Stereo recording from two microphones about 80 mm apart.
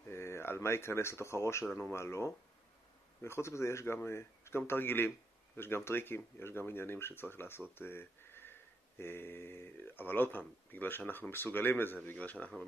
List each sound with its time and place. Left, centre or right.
0.1 s speech: left; by 12.6 s centre